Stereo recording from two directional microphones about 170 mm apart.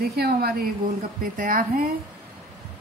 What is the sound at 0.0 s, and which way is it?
Speech, 65° right (ahead or behind).